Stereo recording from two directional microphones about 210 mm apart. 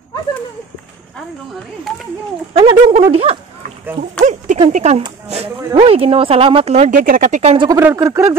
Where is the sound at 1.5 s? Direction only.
Centre (ahead or behind).